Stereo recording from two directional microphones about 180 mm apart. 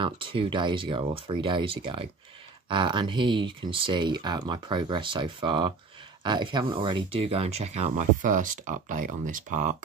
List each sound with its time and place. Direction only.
0.0 s speech: 30° right (ahead or behind); by 9.8 s 45° right (ahead or behind)